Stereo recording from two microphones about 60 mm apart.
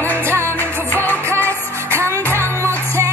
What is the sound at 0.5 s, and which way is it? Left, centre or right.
Music, left.